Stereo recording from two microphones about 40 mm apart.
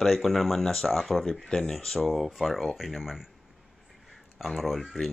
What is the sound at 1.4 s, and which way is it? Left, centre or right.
Speech, centre.